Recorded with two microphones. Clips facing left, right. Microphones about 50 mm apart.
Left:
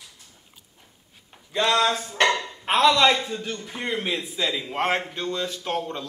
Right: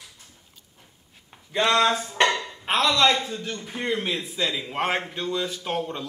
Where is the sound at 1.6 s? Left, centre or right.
Centre.